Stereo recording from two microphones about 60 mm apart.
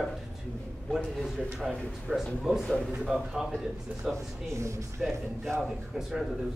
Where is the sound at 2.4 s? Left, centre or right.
Centre.